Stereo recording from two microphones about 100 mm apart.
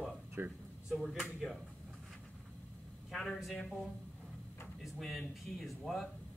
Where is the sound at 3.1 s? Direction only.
Centre (ahead or behind).